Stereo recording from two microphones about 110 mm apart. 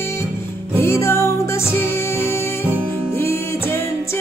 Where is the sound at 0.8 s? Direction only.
25° left (ahead or behind).